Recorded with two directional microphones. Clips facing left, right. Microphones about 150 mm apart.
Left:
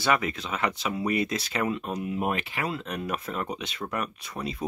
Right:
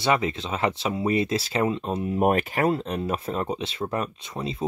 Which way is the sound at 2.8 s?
30° right (ahead or behind).